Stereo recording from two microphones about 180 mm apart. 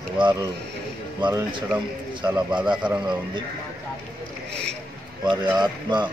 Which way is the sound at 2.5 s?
5° right (ahead or behind).